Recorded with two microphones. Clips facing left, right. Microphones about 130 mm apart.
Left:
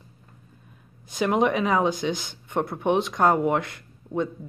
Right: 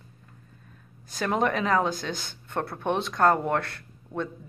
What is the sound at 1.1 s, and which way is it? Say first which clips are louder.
Speech: left 4 dB; 15° left (ahead or behind).